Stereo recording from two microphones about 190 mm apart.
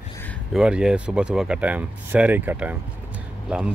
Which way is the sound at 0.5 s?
5° right (ahead or behind).